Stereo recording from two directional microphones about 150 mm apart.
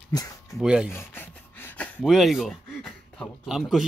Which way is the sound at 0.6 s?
5° right (ahead or behind).